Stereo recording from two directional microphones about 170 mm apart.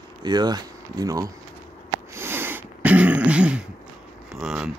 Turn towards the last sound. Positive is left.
turn(degrees=0)  # may be behind; listen again after turning